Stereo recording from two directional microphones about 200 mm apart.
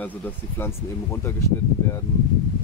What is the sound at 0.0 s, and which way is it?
Speech, 10° left (ahead or behind).